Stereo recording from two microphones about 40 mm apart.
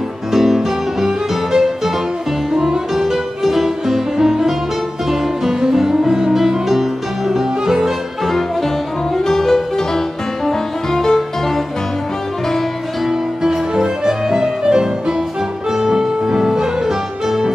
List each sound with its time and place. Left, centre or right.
0.3 s music: centre
9.1 s music: centre
13.4 s music: centre